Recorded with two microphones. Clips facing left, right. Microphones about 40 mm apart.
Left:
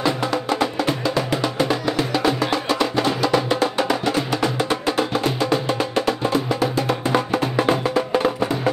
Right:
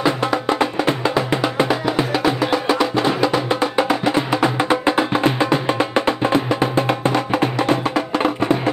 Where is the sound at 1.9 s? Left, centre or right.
Centre.